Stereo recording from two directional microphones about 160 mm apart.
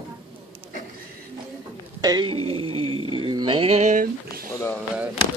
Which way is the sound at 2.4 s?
35° right (ahead or behind).